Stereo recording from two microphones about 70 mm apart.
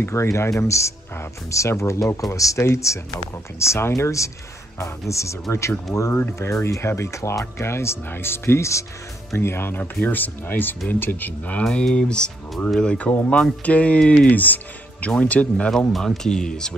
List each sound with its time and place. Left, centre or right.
0.0 s speech: left
11.6 s speech: centre
15.9 s speech: centre